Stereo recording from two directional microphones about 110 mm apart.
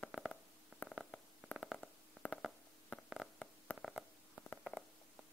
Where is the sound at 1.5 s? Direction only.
Centre (ahead or behind).